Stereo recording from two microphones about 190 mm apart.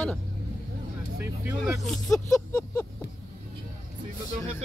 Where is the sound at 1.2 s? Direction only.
10° right (ahead or behind).